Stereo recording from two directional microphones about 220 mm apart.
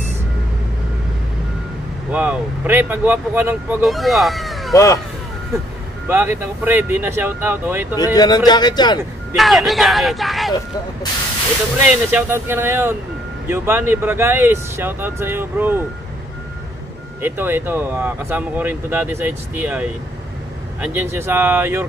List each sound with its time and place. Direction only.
2.0 s speech: 5° right (ahead or behind)
4.7 s speech: 15° left (ahead or behind)
6.0 s speech: 10° right (ahead or behind)
7.9 s speech: 15° left (ahead or behind)
9.4 s speech: centre (ahead or behind)
11.8 s speech: 10° right (ahead or behind)
17.2 s speech: 10° right (ahead or behind)